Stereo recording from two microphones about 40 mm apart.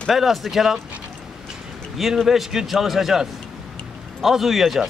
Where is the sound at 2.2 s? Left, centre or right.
Centre.